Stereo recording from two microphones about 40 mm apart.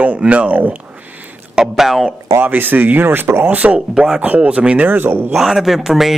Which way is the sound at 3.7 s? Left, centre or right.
Centre.